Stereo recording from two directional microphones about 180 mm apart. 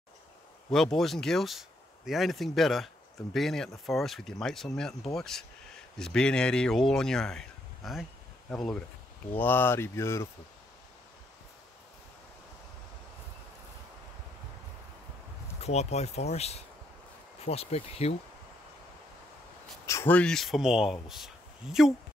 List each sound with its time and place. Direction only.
0.9 s speech: centre (ahead or behind)
15.6 s speech: 35° left (ahead or behind)
19.9 s speech: 10° left (ahead or behind)